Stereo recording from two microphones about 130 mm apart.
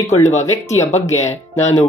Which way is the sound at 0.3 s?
60° left (ahead or behind).